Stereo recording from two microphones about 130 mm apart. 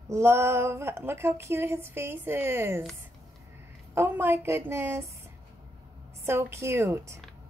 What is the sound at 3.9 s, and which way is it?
A woman's voice, 15° right (ahead or behind).